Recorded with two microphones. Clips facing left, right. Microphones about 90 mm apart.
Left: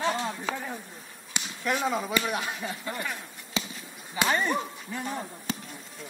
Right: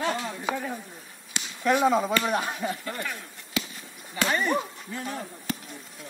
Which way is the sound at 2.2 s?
40° right (ahead or behind).